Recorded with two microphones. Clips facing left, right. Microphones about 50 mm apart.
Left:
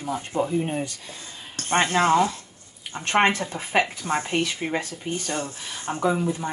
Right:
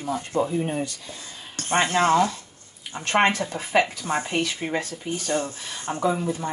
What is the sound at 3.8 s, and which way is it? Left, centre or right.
Speech, centre.